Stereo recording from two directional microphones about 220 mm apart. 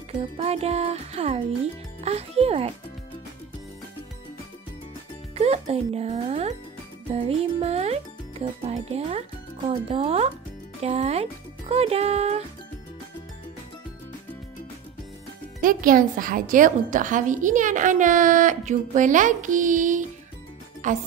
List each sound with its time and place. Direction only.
0.4 s music: 30° right (ahead or behind)
5.3 s speech: 30° right (ahead or behind)
10.8 s music: 30° right (ahead or behind)
15.6 s a woman's voice: 40° right (ahead or behind)